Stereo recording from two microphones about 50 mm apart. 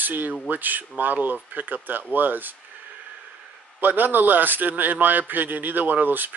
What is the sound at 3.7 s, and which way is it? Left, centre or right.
A man's voice, right.